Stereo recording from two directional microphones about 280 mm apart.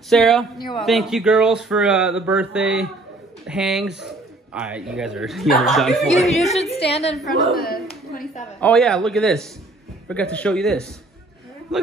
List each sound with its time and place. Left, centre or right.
0.1 s speech: centre
6.4 s a woman's voice: left
7.5 s clapping: left
8.5 s speech: centre